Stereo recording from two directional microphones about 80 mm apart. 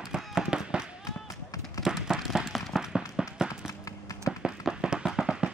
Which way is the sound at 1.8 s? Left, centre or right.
Centre.